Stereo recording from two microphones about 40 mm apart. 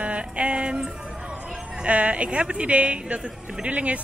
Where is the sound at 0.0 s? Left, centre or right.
Right.